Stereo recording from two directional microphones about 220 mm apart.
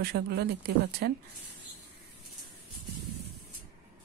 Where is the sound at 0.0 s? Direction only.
50° right (ahead or behind).